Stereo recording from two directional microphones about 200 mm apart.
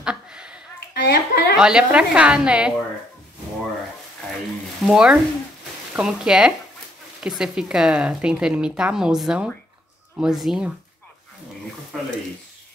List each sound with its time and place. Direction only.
0.0 s a sound: 5° right (ahead or behind)
1.0 s a woman's voice: 50° left (ahead or behind)
1.6 s speech: 5° right (ahead or behind)
4.8 s speech: 5° right (ahead or behind)